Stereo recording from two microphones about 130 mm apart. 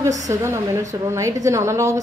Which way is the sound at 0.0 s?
25° right (ahead or behind).